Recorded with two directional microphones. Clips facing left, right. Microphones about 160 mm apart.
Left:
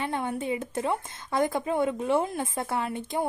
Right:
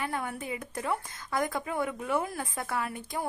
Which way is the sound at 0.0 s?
25° left (ahead or behind).